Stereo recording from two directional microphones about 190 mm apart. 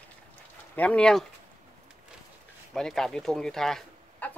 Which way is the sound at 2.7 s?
Centre (ahead or behind).